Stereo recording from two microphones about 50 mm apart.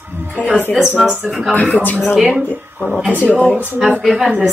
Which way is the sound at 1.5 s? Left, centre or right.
Left.